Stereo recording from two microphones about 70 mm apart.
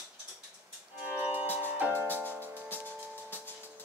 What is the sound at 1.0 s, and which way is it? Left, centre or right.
Music, right.